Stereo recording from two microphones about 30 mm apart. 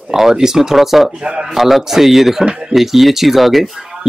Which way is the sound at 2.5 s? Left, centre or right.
Right.